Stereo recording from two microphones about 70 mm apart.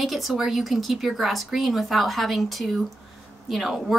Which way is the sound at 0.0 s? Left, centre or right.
Centre.